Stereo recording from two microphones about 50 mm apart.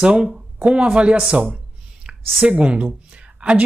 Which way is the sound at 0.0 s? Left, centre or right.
Centre.